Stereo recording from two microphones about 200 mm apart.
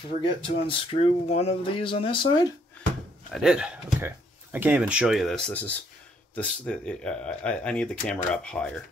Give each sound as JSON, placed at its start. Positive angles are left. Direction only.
{"t": 0.2, "sound": "speech", "side_deg": 25}
{"t": 3.4, "sound": "speech", "side_deg": -5}